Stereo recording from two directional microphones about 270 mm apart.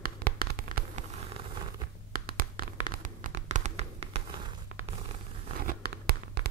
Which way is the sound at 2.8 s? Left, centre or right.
Right.